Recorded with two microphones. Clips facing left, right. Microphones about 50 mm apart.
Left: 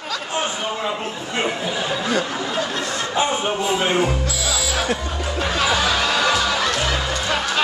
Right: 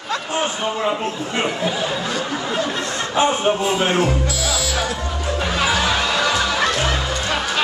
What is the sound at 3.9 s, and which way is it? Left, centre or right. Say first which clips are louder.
Music: right 1 dB; centre.